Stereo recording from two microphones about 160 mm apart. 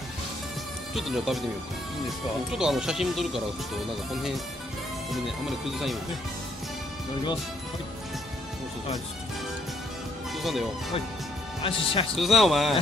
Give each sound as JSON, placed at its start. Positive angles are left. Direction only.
{"t": 0.9, "sound": "speech", "side_deg": 0}
{"t": 2.5, "sound": "speech", "side_deg": -5}
{"t": 10.3, "sound": "speech", "side_deg": 0}
{"t": 11.6, "sound": "speech", "side_deg": 35}
{"t": 12.2, "sound": "speech", "side_deg": 0}